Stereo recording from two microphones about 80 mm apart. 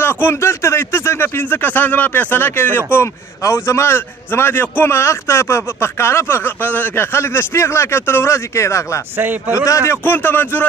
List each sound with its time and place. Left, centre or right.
0.0 s a man's voice: left
9.1 s a man's voice: right
9.7 s a man's voice: left
10.0 s speech: left